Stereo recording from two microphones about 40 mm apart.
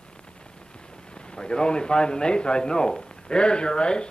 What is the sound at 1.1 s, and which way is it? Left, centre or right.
A man's voice, left.